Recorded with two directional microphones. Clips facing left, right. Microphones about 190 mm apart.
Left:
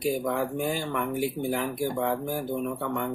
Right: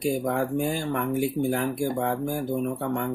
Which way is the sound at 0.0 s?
50° right (ahead or behind).